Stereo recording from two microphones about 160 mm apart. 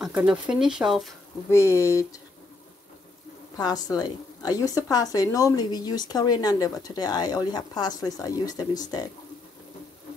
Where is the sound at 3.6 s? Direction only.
25° left (ahead or behind).